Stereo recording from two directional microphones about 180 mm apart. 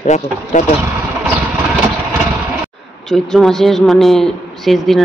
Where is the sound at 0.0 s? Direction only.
45° left (ahead or behind).